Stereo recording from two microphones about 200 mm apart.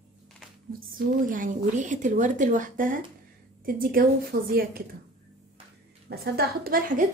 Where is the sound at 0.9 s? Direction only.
40° right (ahead or behind).